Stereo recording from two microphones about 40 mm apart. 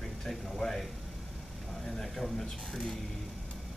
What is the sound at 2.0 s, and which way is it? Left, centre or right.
A man's voice, centre.